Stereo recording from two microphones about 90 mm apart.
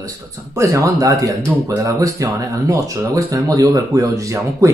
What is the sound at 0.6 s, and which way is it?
Speech, 40° right (ahead or behind).